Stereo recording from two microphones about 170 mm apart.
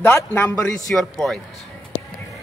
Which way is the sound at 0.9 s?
5° left (ahead or behind).